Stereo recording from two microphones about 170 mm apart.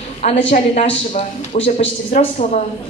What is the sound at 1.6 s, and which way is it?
Speech, 40° left (ahead or behind).